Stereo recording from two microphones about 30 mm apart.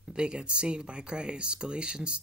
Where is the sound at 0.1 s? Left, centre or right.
Right.